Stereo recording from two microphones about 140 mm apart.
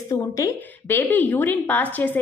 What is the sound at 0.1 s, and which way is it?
A woman's voice, 25° left (ahead or behind).